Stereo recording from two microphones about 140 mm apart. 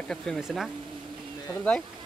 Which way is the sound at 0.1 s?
Centre (ahead or behind).